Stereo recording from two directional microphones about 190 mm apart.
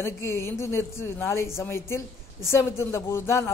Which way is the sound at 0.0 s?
15° left (ahead or behind).